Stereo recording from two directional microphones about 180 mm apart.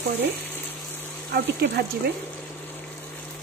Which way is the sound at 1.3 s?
65° right (ahead or behind).